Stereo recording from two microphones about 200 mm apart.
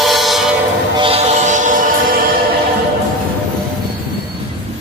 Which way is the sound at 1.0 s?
35° right (ahead or behind).